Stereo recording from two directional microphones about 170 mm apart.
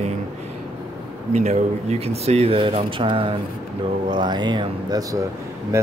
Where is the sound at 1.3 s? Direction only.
40° right (ahead or behind).